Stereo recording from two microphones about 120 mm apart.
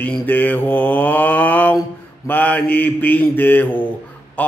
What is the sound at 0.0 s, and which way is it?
Mantra, 15° left (ahead or behind).